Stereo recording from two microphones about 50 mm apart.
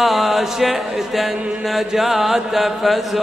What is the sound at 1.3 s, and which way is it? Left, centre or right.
Mantra, right.